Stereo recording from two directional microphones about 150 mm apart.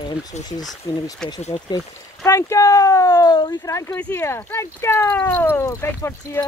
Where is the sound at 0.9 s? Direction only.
25° left (ahead or behind).